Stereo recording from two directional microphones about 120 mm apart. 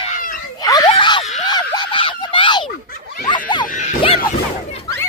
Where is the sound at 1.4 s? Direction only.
35° left (ahead or behind).